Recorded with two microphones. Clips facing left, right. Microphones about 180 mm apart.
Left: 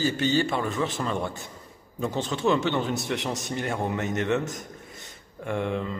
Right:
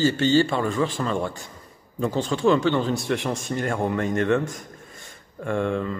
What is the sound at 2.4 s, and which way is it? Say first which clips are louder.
Speech: right 4 dB; 20° left (ahead or behind).